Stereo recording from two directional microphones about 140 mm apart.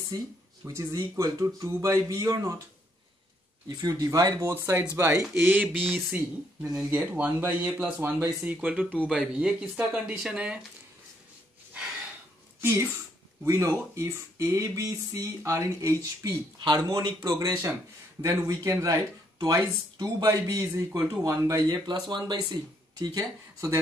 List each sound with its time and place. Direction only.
0.7 s speech: 20° right (ahead or behind)
3.6 s speech: 25° right (ahead or behind); by 10.6 s 10° right (ahead or behind)
12.5 s a sound: 20° right (ahead or behind)
13.4 s speech: 20° right (ahead or behind)